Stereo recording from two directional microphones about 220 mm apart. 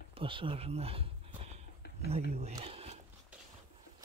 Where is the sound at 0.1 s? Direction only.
25° right (ahead or behind).